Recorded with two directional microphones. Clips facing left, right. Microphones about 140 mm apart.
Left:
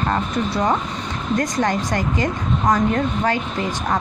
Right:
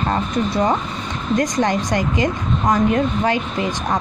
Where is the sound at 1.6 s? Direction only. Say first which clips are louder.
Right 2 dB; 15° right (ahead or behind).